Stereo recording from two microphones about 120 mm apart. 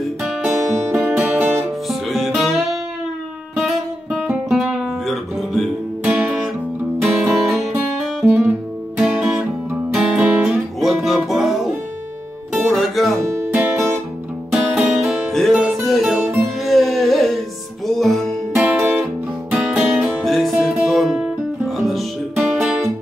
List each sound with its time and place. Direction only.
0.0 s music: centre (ahead or behind)
1.9 s music: centre (ahead or behind)
3.5 s guitar: 5° right (ahead or behind)
7.0 s music: centre (ahead or behind)
14.5 s music: 5° right (ahead or behind)
18.6 s music: 20° right (ahead or behind)
19.5 s music: 5° right (ahead or behind)